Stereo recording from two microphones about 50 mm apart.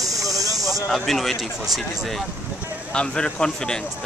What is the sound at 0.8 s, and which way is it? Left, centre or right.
Speech, centre.